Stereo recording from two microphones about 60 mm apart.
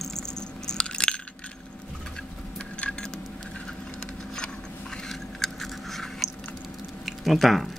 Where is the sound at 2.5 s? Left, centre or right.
Centre.